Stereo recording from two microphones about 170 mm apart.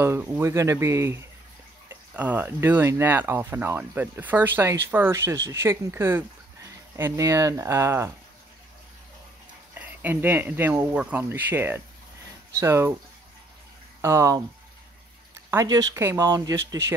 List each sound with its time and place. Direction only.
0.0 s speech: 15° right (ahead or behind)
9.8 s speech: 10° right (ahead or behind)
14.0 s speech: 15° right (ahead or behind)